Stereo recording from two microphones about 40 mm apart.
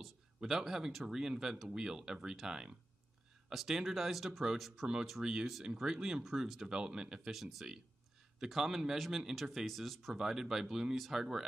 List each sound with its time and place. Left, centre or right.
0.4 s speech: centre
5.2 s speech: centre
6.2 s speech: centre
6.7 s speech: centre
7.2 s speech: centre
10.1 s speech: centre